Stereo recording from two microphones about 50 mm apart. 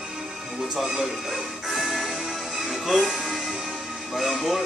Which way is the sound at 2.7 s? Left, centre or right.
Centre.